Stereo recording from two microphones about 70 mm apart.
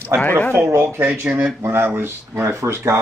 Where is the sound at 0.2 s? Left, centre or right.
Left.